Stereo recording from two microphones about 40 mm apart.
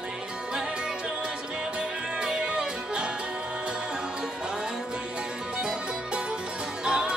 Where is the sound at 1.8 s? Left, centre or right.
Centre.